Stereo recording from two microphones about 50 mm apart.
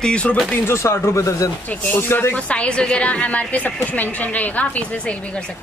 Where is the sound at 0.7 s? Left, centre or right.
Left.